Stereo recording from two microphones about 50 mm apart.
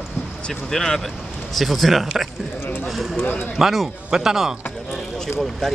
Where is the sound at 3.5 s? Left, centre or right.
Centre.